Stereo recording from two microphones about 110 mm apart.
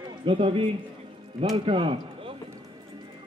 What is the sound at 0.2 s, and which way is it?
A man's voice, 50° right (ahead or behind).